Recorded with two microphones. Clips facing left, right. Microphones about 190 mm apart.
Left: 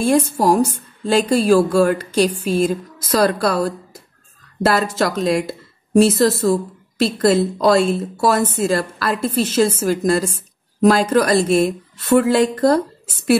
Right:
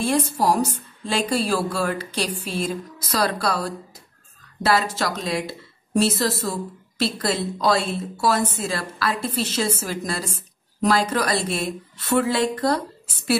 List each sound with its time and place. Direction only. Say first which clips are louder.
0.0 s a woman's voice: left 5 dB; 50° left (ahead or behind)